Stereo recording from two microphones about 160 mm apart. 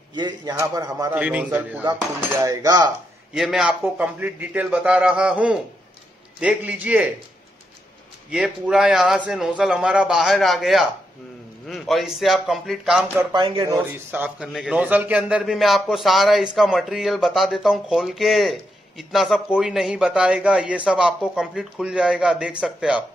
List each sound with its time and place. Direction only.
0.1 s a man's voice: 25° right (ahead or behind)
1.1 s a man's voice: 10° right (ahead or behind)
2.3 s a man's voice: 20° right (ahead or behind)
3.3 s a man's voice: centre (ahead or behind)
8.3 s speech: 5° right (ahead or behind)
13.3 s speech: 30° right (ahead or behind)
13.7 s a man's voice: 15° right (ahead or behind)